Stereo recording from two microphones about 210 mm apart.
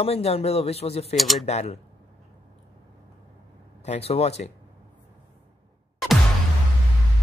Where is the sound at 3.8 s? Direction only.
30° left (ahead or behind).